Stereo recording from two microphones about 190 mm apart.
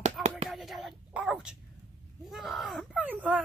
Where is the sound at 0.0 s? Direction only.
35° right (ahead or behind).